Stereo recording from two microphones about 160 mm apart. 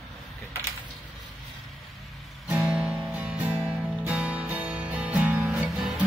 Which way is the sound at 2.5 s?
5° right (ahead or behind).